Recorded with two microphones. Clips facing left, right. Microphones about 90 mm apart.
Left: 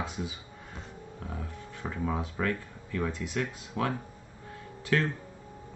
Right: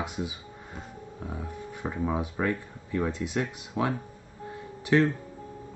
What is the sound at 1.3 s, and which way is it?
Speech, 15° right (ahead or behind).